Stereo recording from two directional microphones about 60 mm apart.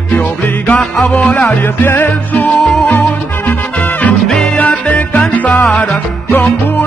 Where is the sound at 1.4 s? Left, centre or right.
Left.